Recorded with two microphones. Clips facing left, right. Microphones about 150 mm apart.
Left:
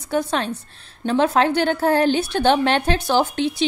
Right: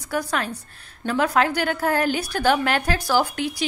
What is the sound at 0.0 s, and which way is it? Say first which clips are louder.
A woman's voice: left 4 dB; 25° left (ahead or behind).